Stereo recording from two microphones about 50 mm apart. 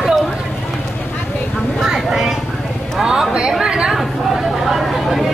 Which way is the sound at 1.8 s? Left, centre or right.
Centre.